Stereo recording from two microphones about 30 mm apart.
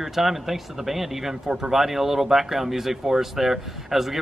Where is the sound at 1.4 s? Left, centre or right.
Right.